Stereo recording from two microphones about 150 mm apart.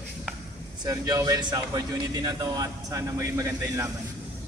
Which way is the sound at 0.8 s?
25° right (ahead or behind).